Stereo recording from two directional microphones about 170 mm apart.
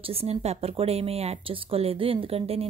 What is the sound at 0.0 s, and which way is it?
Speech, 35° right (ahead or behind).